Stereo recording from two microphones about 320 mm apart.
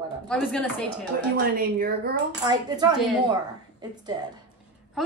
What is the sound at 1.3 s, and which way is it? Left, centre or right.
Speech, right.